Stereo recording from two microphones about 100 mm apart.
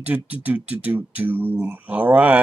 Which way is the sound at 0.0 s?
15° right (ahead or behind).